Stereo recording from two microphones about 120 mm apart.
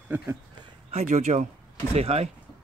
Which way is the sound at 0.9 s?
70° right (ahead or behind).